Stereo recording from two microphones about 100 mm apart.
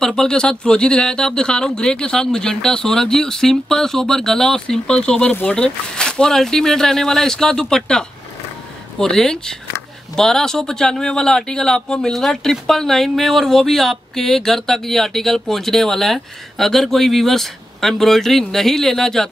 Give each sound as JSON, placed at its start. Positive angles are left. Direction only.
{"t": 0.0, "sound": "speech", "side_deg": 5}